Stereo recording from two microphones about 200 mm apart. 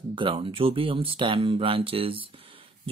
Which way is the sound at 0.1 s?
25° right (ahead or behind).